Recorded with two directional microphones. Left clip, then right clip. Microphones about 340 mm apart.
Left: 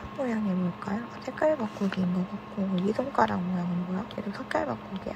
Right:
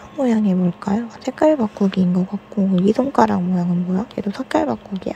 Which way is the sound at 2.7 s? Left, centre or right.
Right.